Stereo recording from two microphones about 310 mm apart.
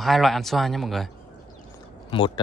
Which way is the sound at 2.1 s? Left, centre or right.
Centre.